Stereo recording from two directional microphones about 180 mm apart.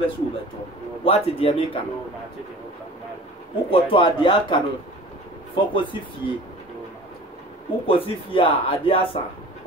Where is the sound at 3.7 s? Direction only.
30° left (ahead or behind).